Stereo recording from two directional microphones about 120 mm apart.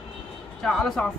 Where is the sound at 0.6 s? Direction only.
5° left (ahead or behind).